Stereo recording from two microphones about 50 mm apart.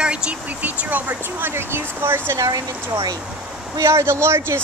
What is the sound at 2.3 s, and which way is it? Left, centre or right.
Speech, right.